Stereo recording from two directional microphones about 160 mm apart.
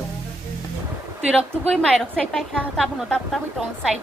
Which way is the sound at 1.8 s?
Centre (ahead or behind).